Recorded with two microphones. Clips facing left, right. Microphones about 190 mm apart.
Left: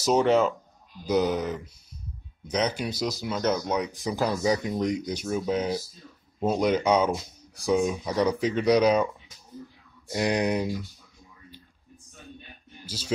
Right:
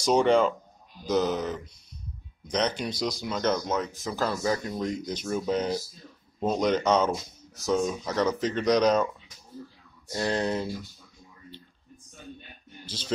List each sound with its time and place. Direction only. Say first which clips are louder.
0.0 s speech: even; 5° left (ahead or behind)
10.1 s speech: left 2 dB; 15° left (ahead or behind)
12.8 s speech: left 1 dB; 10° left (ahead or behind)